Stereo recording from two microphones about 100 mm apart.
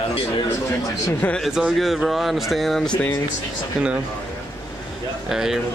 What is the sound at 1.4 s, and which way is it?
Speech, 5° right (ahead or behind).